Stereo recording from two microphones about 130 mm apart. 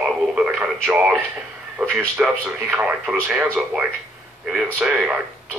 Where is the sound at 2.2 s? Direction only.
10° right (ahead or behind).